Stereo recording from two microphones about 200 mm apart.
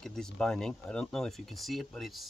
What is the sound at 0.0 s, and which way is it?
Speech, 5° left (ahead or behind).